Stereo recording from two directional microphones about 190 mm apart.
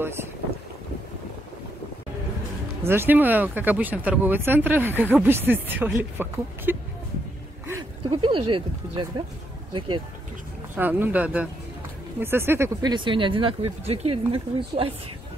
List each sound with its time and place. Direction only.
0.0 s speech: 10° right (ahead or behind)
2.8 s speech: 10° right (ahead or behind)
8.0 s speech: 25° right (ahead or behind)
10.8 s speech: 10° right (ahead or behind); by 14.9 s 30° right (ahead or behind)